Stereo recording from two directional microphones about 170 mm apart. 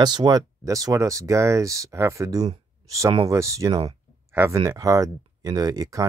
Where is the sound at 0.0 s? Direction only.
25° right (ahead or behind).